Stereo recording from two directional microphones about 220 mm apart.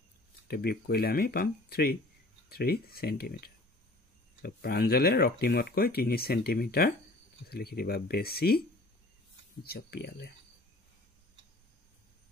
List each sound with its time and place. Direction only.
0.5 s speech: 45° left (ahead or behind)